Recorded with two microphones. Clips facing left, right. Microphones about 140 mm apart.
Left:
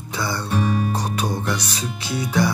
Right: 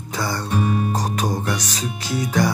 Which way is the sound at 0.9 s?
45° right (ahead or behind).